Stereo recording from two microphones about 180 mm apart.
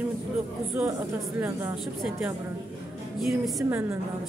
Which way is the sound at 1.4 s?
5° right (ahead or behind).